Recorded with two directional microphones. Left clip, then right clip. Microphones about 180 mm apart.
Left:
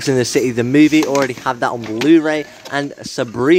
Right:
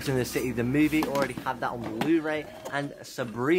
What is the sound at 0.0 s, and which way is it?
Speech, 50° left (ahead or behind).